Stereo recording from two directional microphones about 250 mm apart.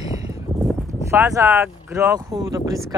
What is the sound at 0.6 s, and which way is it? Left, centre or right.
Speech, centre.